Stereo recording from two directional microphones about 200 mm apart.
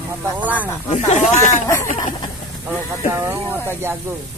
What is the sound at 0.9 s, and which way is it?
Speech, 35° left (ahead or behind).